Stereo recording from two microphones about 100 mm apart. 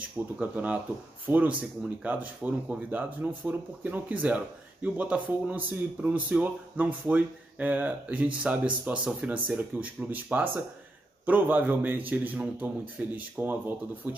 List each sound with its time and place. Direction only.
0.4 s speech: 15° right (ahead or behind)